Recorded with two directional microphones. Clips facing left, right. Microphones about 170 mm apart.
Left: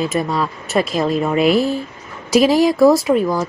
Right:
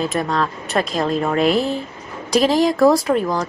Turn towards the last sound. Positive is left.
turn(degrees=5)  # may be behind; listen again after turning